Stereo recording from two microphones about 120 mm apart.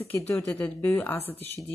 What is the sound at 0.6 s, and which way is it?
Speech, 15° left (ahead or behind).